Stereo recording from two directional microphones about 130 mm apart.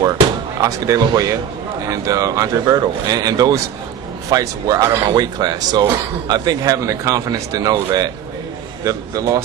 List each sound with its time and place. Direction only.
0.6 s speech: 25° right (ahead or behind)